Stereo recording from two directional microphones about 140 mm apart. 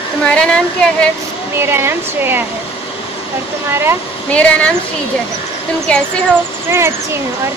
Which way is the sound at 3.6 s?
15° right (ahead or behind).